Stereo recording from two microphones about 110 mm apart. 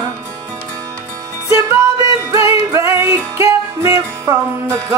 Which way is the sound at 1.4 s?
30° right (ahead or behind).